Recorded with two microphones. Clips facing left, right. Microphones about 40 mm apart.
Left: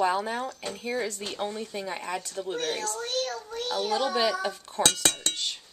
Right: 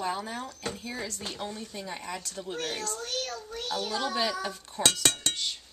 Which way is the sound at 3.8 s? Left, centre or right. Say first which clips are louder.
Left 4 dB; centre.